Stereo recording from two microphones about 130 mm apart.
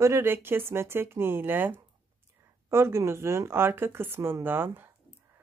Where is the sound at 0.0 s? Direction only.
20° right (ahead or behind).